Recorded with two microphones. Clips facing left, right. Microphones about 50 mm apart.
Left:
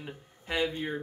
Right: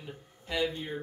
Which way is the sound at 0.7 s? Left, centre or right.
Left.